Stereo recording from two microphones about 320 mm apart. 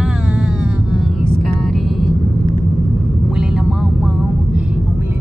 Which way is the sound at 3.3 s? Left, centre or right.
Centre.